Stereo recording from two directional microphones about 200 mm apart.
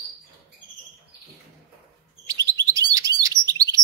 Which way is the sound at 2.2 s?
20° right (ahead or behind).